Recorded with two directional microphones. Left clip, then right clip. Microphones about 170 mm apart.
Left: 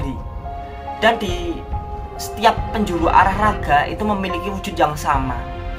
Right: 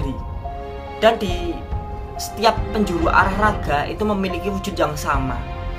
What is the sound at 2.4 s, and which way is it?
A woman's voice, 5° right (ahead or behind).